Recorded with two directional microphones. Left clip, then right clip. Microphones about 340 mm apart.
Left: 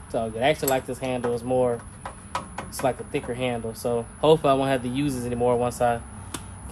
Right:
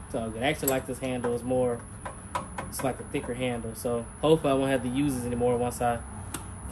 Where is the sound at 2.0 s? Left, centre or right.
Centre.